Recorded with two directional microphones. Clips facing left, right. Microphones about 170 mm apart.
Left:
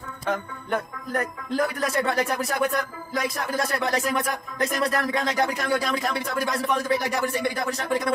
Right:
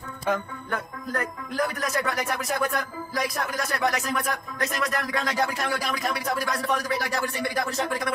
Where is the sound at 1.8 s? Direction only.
30° left (ahead or behind).